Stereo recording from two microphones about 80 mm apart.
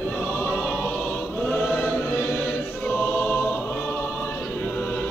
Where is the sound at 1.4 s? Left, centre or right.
Centre.